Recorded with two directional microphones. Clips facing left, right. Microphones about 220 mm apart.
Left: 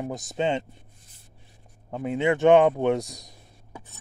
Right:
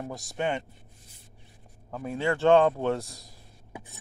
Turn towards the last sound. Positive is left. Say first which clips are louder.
# left 3 dB
turn(degrees=15)  # may be behind; listen again after turning